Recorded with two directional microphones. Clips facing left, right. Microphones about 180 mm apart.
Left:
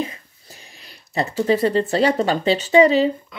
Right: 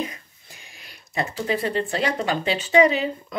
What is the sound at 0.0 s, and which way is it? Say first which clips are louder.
Speech: left 3 dB; 35° left (ahead or behind).